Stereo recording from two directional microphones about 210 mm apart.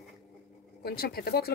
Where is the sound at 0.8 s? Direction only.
50° left (ahead or behind).